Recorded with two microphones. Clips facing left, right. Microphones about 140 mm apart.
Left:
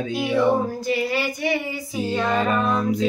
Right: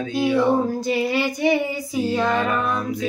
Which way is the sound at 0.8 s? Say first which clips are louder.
Right 2 dB; 20° right (ahead or behind).